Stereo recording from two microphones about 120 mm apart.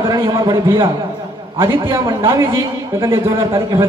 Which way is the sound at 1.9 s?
20° right (ahead or behind).